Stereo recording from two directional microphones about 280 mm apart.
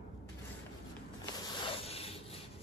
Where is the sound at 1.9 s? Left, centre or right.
Left.